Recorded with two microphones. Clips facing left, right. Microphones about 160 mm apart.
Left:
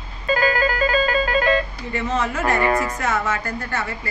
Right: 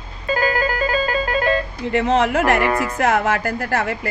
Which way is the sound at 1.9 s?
75° right (ahead or behind).